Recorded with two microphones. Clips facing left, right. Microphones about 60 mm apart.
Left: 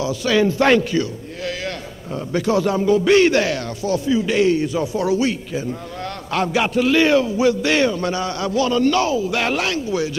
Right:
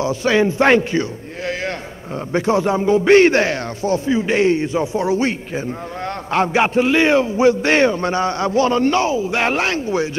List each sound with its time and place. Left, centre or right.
0.0 s a man's voice: right